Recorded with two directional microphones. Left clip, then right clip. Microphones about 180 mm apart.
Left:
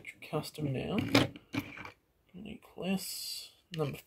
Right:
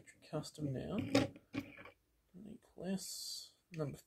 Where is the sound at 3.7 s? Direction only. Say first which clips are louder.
Left 8 dB; 20° left (ahead or behind).